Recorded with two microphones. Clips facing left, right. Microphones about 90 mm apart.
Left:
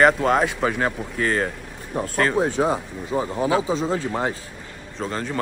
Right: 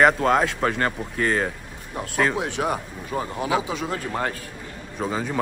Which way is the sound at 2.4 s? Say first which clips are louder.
Left 5 dB; 35° left (ahead or behind).